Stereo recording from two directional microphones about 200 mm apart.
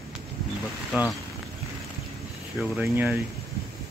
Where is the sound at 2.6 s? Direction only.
10° right (ahead or behind).